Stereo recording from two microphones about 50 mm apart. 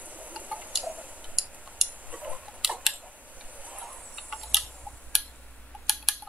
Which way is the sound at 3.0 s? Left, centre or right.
Right.